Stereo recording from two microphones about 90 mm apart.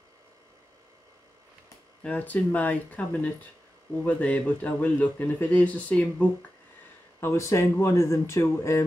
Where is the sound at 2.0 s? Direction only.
15° left (ahead or behind).